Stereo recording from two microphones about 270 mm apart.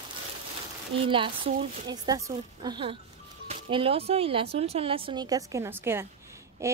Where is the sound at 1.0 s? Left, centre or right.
Centre.